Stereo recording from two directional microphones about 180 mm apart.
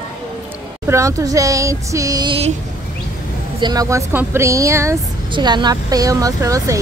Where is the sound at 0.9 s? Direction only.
15° right (ahead or behind).